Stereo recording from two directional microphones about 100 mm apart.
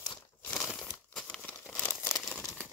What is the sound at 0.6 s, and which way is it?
Crumpling, centre (ahead or behind).